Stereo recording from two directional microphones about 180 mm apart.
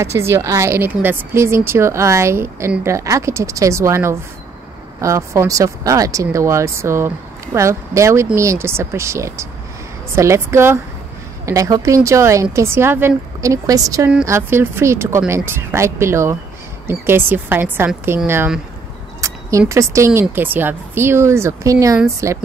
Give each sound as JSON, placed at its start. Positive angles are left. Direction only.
{"t": 0.0, "sound": "speech", "side_deg": -15}
{"t": 19.2, "sound": "a sound", "side_deg": -15}
{"t": 19.7, "sound": "speech", "side_deg": -15}